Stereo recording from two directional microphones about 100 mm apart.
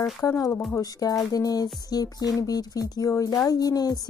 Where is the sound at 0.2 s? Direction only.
30° left (ahead or behind).